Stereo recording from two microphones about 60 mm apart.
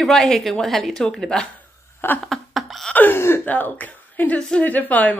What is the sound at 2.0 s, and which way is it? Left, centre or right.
A woman's voice, left.